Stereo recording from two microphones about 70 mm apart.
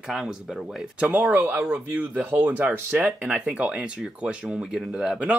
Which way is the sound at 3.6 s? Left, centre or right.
Centre.